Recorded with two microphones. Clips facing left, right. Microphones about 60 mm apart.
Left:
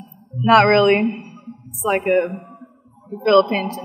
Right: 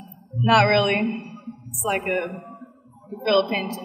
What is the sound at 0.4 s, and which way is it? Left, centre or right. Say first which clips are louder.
A woman's voice: left 5 dB; left.